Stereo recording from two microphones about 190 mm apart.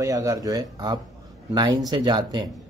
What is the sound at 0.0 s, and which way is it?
A man's voice, 15° right (ahead or behind).